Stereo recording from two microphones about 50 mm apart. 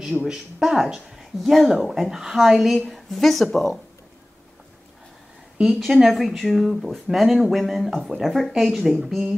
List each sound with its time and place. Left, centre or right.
0.2 s speech: centre
1.4 s speech: centre
2.8 s speech: centre
5.7 s speech: centre